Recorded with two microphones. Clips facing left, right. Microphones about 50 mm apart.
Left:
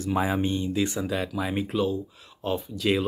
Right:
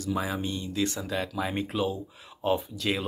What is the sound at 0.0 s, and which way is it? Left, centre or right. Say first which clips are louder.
Speech: left 5 dB; left.